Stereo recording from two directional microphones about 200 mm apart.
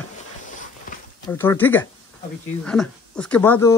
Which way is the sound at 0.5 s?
40° left (ahead or behind).